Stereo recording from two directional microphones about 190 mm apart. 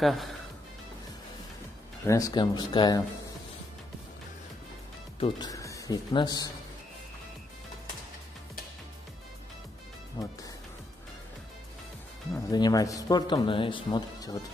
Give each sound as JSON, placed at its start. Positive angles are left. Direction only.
{"t": 0.0, "sound": "speech", "side_deg": 0}
{"t": 2.0, "sound": "speech", "side_deg": 15}
{"t": 5.2, "sound": "speech", "side_deg": 20}
{"t": 10.2, "sound": "speech", "side_deg": 20}
{"t": 12.4, "sound": "speech", "side_deg": 20}